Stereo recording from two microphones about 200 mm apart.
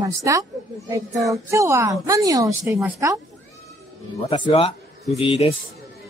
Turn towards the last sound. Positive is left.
turn(degrees=30)  # may be behind; listen again after turning